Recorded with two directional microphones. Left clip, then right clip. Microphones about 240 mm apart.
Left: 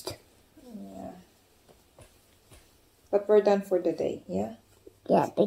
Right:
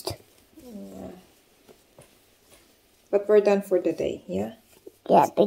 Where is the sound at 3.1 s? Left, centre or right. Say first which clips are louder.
Right 3 dB; right.